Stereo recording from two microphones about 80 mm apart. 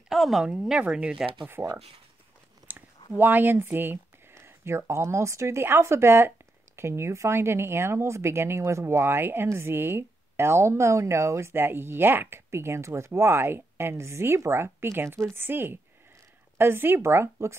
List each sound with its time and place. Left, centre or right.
0.1 s speech: centre
1.6 s speech: right
2.6 s a sound: right
3.2 s speech: right